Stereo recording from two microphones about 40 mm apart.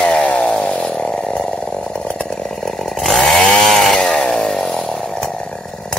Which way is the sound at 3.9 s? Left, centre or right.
Left.